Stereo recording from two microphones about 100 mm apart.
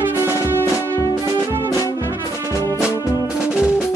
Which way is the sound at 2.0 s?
30° right (ahead or behind).